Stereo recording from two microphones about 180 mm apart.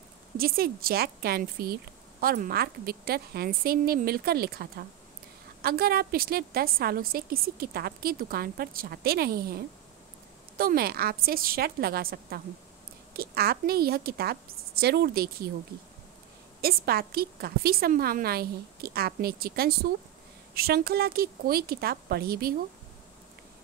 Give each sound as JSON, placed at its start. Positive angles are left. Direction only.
{"t": 0.4, "sound": "a woman's voice", "side_deg": -55}
{"t": 10.6, "sound": "a woman's voice", "side_deg": -55}
{"t": 16.6, "sound": "a woman's voice", "side_deg": -55}